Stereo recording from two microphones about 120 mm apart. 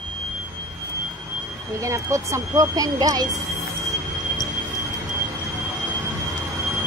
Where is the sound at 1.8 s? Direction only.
25° right (ahead or behind).